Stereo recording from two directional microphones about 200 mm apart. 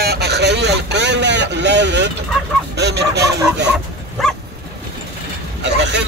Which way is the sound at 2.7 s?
55° right (ahead or behind).